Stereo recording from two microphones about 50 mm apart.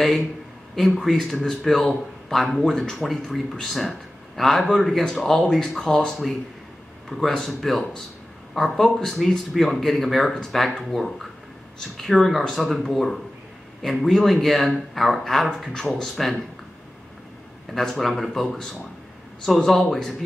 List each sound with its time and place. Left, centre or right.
0.7 s speech: centre
7.3 s speech: centre
17.6 s speech: centre